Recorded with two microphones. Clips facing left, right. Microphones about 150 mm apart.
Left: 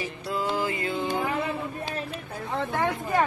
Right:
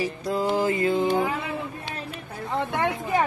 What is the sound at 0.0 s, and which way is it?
Mantra, 40° right (ahead or behind).